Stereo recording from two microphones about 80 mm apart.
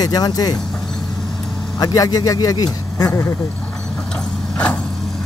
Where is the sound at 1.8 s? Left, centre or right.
Left.